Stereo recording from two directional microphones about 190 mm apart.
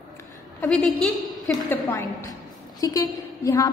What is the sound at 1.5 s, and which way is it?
A woman's voice, 15° left (ahead or behind).